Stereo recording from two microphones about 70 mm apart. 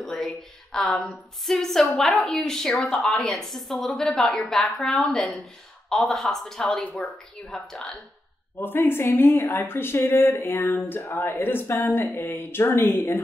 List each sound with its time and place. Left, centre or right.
0.0 s a sound: centre
1.4 s a woman's voice: centre
8.5 s speech: left